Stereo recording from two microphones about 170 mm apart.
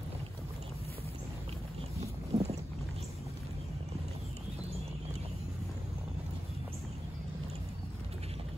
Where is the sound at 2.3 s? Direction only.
40° right (ahead or behind).